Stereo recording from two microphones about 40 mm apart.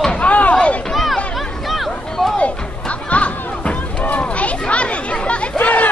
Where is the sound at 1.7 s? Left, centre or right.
Centre.